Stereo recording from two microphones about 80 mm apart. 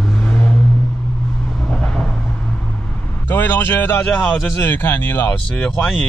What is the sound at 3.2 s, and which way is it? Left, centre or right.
Speech, left.